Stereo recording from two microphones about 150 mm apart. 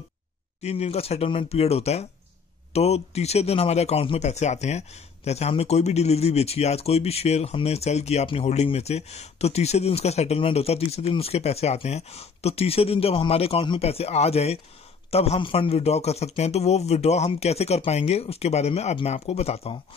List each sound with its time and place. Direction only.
0.6 s speech: 45° left (ahead or behind)